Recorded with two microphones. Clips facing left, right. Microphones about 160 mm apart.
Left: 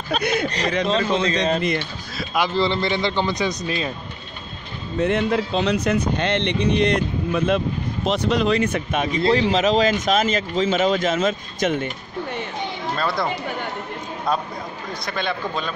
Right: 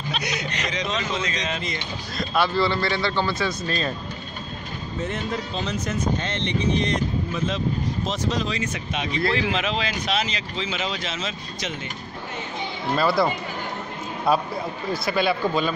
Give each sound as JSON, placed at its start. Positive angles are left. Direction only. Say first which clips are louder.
{"t": 0.1, "sound": "speech", "louder": "left 9 dB", "side_deg": 55}
{"t": 0.8, "sound": "speech", "louder": "left 8 dB", "side_deg": 30}
{"t": 2.1, "sound": "a man's voice", "louder": "left 1 dB", "side_deg": 15}
{"t": 4.9, "sound": "speech", "louder": "left 9 dB", "side_deg": 70}
{"t": 9.5, "sound": "speech", "louder": "left 8 dB", "side_deg": 40}
{"t": 12.9, "sound": "speech", "louder": "right 4 dB", "side_deg": -5}
{"t": 14.9, "sound": "speech", "louder": "right 4 dB", "side_deg": -5}